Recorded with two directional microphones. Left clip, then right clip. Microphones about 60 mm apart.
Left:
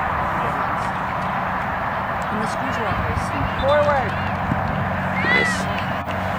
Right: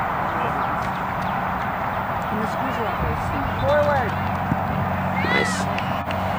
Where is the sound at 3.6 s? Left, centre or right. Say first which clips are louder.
Left 2 dB; left.